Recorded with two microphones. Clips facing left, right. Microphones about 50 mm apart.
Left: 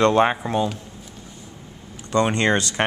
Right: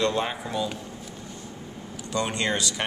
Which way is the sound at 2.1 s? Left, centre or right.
Left.